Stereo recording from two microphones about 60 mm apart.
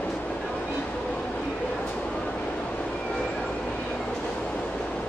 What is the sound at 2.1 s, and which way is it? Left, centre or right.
Train, centre.